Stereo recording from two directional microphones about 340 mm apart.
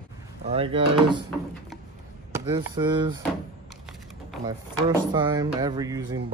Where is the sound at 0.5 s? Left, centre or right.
Centre.